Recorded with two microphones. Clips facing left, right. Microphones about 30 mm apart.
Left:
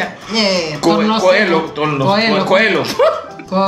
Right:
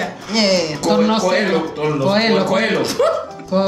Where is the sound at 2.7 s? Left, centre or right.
Left.